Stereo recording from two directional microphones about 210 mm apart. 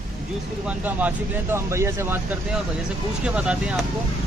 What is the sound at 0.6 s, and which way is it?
Speech, 5° right (ahead or behind).